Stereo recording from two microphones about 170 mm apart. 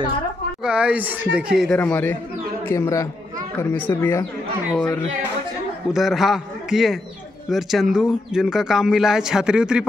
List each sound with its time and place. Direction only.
0.7 s speech: 5° right (ahead or behind)
1.8 s speech: 10° left (ahead or behind); by 9.8 s 5° right (ahead or behind)